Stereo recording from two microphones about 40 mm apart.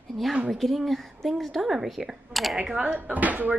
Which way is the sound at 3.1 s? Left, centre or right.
Right.